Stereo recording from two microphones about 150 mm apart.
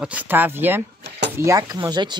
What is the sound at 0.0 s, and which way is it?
Speech, 10° right (ahead or behind).